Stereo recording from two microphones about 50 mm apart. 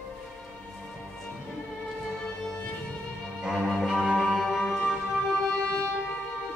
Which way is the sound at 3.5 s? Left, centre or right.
Centre.